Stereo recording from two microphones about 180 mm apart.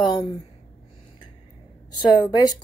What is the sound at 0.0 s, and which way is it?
Speech, 25° left (ahead or behind).